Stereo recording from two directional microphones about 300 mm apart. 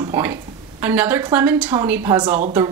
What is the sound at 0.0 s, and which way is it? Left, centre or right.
Speech, centre.